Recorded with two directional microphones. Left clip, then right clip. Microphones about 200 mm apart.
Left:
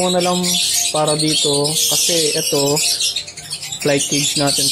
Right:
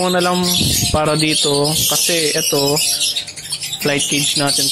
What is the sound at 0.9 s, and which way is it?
Speech, 35° right (ahead or behind).